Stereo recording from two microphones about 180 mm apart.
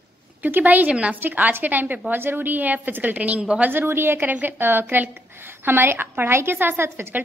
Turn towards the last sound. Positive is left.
turn(degrees=-15)  # may be behind; listen again after turning